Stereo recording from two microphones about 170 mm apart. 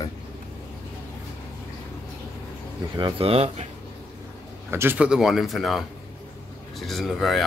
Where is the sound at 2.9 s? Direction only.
30° right (ahead or behind).